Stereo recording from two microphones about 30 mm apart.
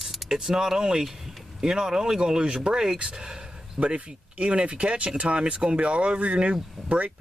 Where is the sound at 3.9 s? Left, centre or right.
Right.